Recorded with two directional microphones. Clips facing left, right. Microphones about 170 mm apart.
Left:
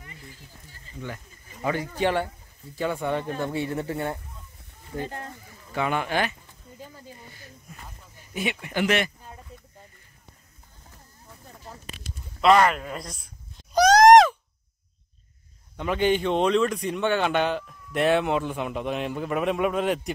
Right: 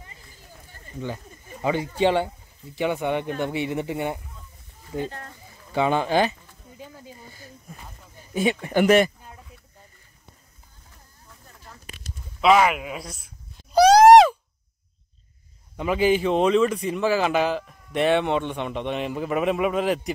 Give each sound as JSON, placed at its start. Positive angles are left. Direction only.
{"t": 1.0, "sound": "speech", "side_deg": -20}
{"t": 5.8, "sound": "speech", "side_deg": -25}
{"t": 8.3, "sound": "speech", "side_deg": -30}
{"t": 12.4, "sound": "a man's voice", "side_deg": -5}
{"t": 13.7, "sound": "a sound", "side_deg": -30}
{"t": 15.7, "sound": "a man's voice", "side_deg": -5}